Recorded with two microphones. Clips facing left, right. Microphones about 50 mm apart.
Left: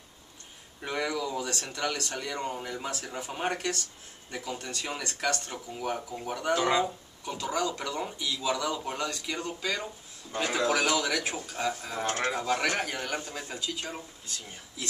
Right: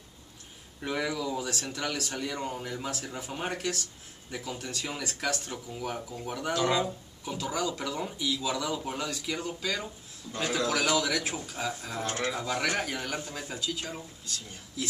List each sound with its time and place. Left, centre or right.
0.7 s a man's voice: centre
5.5 s a man's voice: centre
7.2 s a man's voice: centre
10.3 s a man's voice: centre
10.7 s a man's voice: centre